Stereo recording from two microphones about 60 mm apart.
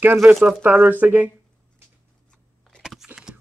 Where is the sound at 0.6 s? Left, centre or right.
Right.